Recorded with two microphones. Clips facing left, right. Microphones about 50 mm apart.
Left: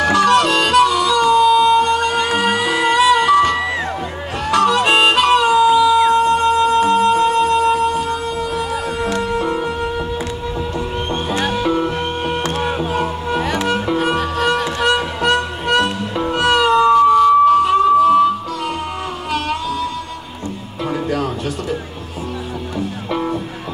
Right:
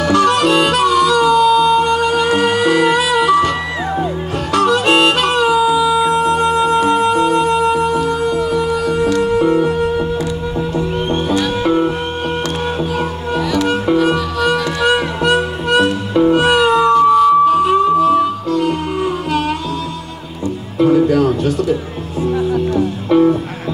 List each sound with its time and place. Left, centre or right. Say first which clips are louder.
0.1 s harmonica: right 3 dB; centre
2.2 s music: right 3 dB; centre
4.5 s harmonica: right 1 dB; centre
5.8 s music: left 1 dB; centre
11.6 s music: right 4 dB; centre
12.6 s music: right 1 dB; centre
14.1 s music: right 1 dB; left
15.2 s music: right 1 dB; centre
20.8 s music: right 9 dB; centre
23.0 s music: right 12 dB; centre